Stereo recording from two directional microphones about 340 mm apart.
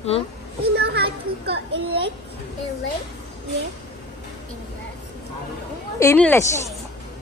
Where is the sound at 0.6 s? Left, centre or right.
Right.